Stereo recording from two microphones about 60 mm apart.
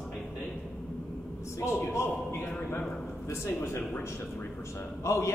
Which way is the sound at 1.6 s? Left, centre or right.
Left.